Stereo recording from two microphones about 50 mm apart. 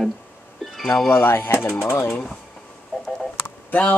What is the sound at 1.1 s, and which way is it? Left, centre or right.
Speech, left.